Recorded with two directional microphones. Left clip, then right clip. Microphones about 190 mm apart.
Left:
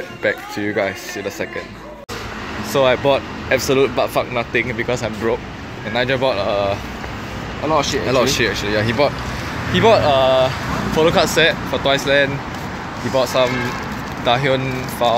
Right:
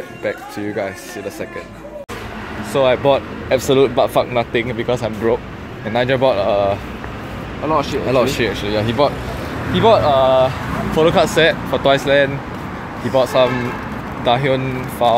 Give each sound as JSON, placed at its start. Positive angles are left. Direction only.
{"t": 0.2, "sound": "speech", "side_deg": 5}
{"t": 2.7, "sound": "a man's voice", "side_deg": -5}